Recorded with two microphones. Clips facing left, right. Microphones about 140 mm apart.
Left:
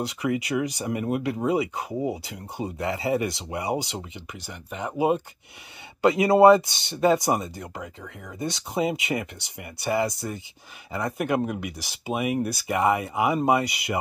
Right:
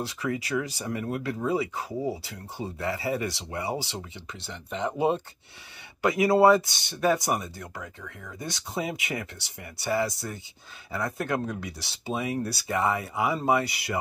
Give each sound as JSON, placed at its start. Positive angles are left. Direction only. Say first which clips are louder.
{"t": 0.0, "sound": "speech", "louder": "left 4 dB", "side_deg": 20}
{"t": 6.0, "sound": "speech", "louder": "left 4 dB", "side_deg": 20}